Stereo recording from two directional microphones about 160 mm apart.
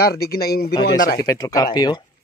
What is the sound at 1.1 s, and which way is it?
Speech, 25° left (ahead or behind).